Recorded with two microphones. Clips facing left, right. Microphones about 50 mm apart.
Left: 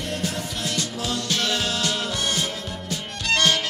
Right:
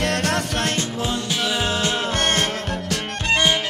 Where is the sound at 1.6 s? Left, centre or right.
Right.